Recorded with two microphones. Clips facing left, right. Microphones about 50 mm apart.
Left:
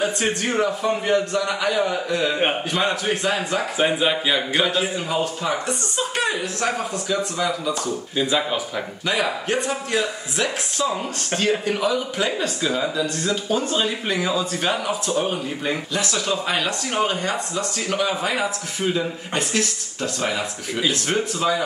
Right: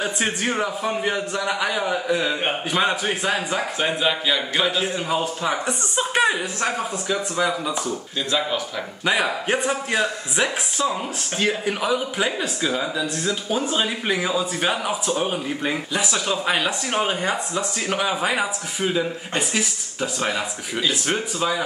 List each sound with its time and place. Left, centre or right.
0.2 s speech: centre
3.7 s speech: centre
4.9 s speech: centre
5.7 s speech: right
8.2 s speech: centre
9.0 s speech: centre